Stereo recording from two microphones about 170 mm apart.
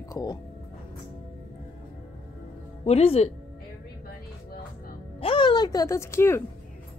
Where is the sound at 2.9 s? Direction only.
35° left (ahead or behind).